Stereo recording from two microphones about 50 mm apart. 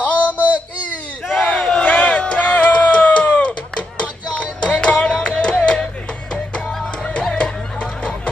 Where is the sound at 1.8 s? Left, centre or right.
Left.